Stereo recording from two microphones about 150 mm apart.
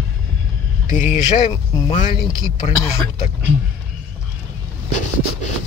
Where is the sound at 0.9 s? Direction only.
55° left (ahead or behind).